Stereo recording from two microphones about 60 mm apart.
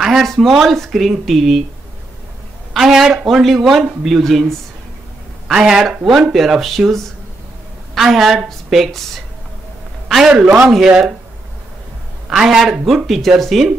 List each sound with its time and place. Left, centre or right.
0.0 s speech: centre
2.8 s speech: centre
5.5 s a man's voice: centre
10.0 s a sound: centre
10.9 s a man's voice: centre
12.3 s speech: centre